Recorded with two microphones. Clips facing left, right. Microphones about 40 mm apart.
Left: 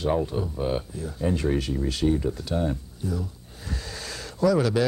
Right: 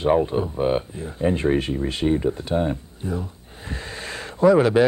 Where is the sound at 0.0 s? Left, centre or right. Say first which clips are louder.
Right 6 dB; right.